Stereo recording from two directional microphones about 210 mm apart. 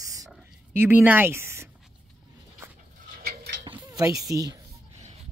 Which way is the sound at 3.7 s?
15° right (ahead or behind).